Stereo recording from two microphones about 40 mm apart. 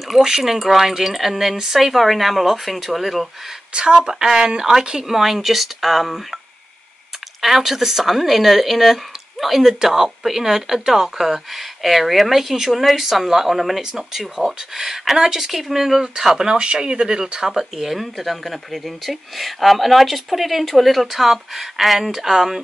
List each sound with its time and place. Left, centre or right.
0.2 s speech: centre
3.7 s speech: right; by 6.2 s centre
7.4 s speech: centre